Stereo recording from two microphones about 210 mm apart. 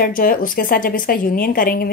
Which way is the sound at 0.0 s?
40° left (ahead or behind).